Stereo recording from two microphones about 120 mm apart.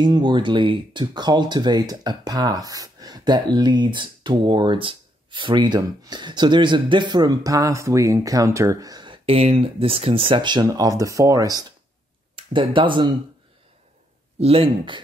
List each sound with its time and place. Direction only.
0.0 s speech: 40° right (ahead or behind)
12.4 s speech: 45° right (ahead or behind)
14.4 s speech: 50° right (ahead or behind)